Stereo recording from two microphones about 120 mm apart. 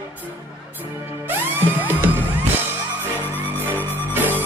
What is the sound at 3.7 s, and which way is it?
Music, 15° left (ahead or behind).